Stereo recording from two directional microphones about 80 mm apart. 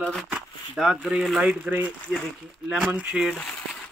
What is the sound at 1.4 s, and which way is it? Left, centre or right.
Speech, centre.